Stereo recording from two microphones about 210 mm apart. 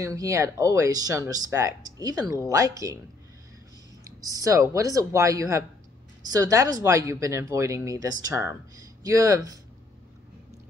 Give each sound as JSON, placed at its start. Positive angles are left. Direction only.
{"t": 0.0, "sound": "speech", "side_deg": -15}
{"t": 4.0, "sound": "speech", "side_deg": -15}